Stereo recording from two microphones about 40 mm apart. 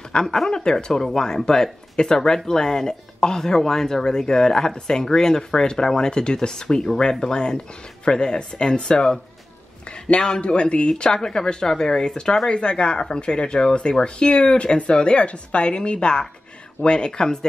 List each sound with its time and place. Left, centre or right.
0.1 s speech: centre
10.4 s speech: left